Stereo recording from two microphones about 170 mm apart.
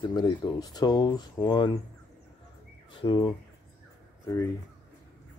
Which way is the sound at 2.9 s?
30° left (ahead or behind).